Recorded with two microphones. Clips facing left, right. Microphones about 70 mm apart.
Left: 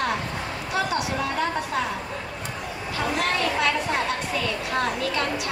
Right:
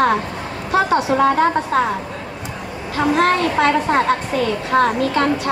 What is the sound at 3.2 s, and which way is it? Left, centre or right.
Speech, right.